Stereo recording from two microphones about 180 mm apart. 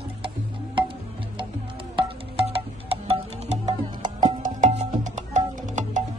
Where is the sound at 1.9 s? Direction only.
30° right (ahead or behind).